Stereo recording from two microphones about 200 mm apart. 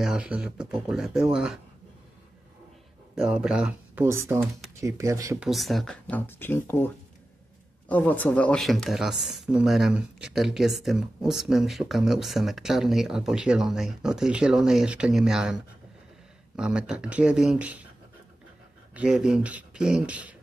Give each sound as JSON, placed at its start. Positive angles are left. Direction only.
{"t": 0.0, "sound": "speech", "side_deg": -5}
{"t": 3.2, "sound": "speech", "side_deg": -5}
{"t": 5.4, "sound": "speech", "side_deg": 0}
{"t": 7.9, "sound": "speech", "side_deg": 10}
{"t": 18.9, "sound": "speech", "side_deg": -5}